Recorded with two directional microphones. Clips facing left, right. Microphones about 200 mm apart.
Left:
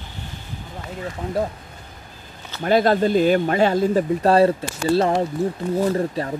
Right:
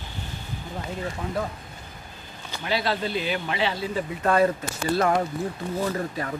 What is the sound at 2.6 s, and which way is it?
Speech, 50° left (ahead or behind).